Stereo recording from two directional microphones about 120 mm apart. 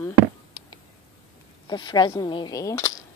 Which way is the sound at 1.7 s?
40° left (ahead or behind).